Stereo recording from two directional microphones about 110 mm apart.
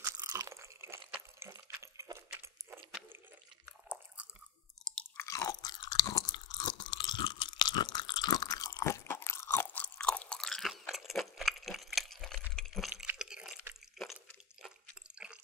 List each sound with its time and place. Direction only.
0.0 s crunch: 30° right (ahead or behind)
1.4 s a sound: 25° right (ahead or behind)
3.9 s chewing: 20° right (ahead or behind)
5.1 s chewing: 25° left (ahead or behind); by 12.4 s 5° left (ahead or behind)
12.5 s a sound: 5° left (ahead or behind)
12.9 s water: 15° right (ahead or behind)